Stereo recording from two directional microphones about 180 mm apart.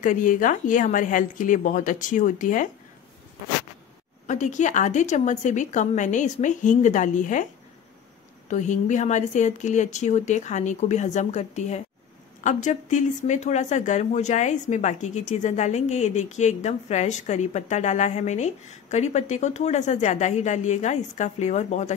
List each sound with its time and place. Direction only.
0.0 s a woman's voice: 45° left (ahead or behind)
4.3 s a woman's voice: 45° left (ahead or behind)
8.5 s speech: 40° left (ahead or behind)